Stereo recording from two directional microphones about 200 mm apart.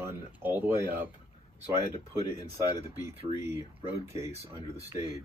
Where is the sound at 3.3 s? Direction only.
10° right (ahead or behind).